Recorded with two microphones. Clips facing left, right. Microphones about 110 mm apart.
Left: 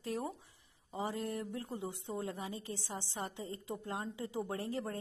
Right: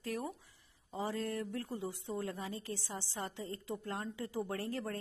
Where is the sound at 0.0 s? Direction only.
25° left (ahead or behind).